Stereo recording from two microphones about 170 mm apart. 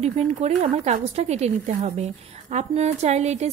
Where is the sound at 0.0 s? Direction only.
40° right (ahead or behind).